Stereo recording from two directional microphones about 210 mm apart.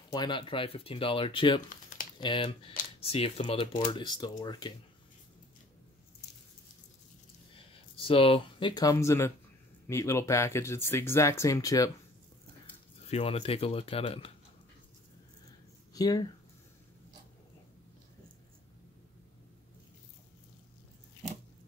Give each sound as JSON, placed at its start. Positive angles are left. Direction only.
{"t": 0.1, "sound": "speech", "side_deg": 20}
{"t": 7.5, "sound": "speech", "side_deg": 25}
{"t": 13.1, "sound": "speech", "side_deg": 30}
{"t": 15.9, "sound": "speech", "side_deg": 15}